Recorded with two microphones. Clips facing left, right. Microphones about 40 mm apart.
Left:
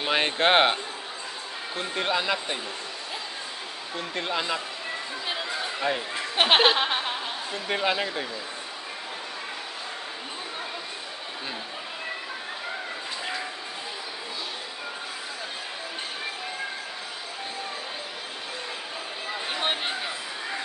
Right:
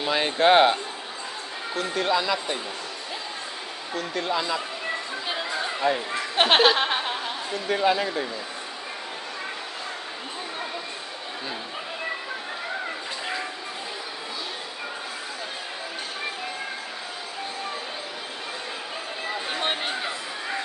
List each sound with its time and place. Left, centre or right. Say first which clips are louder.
0.0 s speech: right 2 dB; left
1.8 s speech: right 3 dB; left
3.9 s speech: right 3 dB; left
5.3 s a sound: right 3 dB; centre
7.5 s speech: right 4 dB; centre
19.3 s a sound: even; centre